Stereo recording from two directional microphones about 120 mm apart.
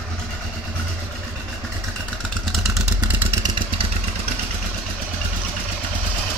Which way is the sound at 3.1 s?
20° right (ahead or behind).